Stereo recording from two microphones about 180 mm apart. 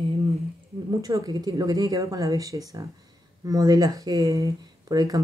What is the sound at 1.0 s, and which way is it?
Speech, 20° right (ahead or behind).